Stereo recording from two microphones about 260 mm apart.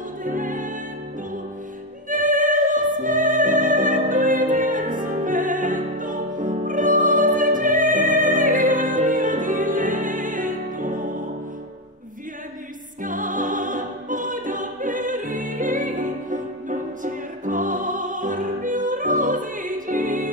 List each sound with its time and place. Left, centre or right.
0.2 s music: right
2.0 s music: right
13.0 s music: right